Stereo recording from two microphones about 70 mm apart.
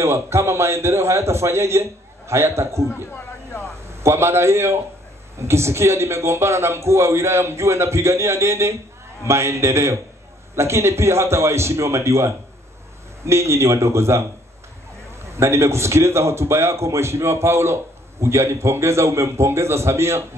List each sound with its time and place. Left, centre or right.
0.0 s a man's voice: right
15.2 s a man's voice: right